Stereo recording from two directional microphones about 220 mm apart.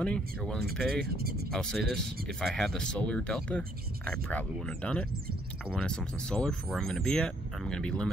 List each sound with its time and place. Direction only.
0.0 s speech: 5° left (ahead or behind)
1.0 s speech: 45° right (ahead or behind)
1.5 s speech: 5° left (ahead or behind)